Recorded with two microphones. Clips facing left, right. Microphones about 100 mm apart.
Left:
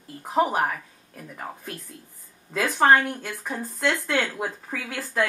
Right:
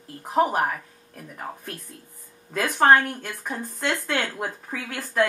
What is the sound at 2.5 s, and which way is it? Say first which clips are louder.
Speech: right 1 dB; centre (ahead or behind).